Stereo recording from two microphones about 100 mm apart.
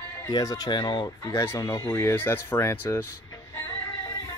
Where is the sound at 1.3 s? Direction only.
25° left (ahead or behind).